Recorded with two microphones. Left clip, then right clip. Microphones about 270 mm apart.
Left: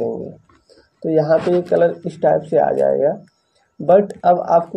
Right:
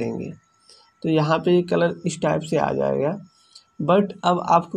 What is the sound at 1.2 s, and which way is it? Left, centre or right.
Speech, right.